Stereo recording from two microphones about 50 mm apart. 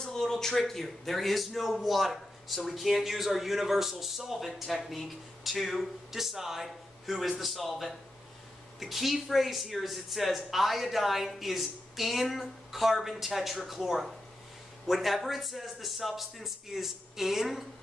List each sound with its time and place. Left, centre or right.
0.0 s speech: centre